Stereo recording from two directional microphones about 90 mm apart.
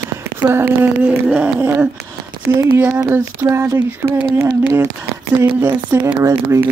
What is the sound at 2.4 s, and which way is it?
Speech, 25° right (ahead or behind).